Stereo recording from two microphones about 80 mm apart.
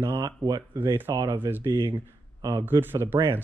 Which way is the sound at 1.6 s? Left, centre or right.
Right.